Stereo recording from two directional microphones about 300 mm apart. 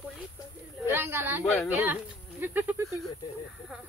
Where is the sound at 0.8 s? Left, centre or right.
Centre.